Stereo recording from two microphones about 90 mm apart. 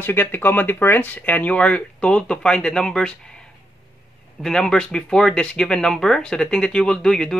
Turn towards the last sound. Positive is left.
turn(degrees=5)  # may be behind; listen again after turning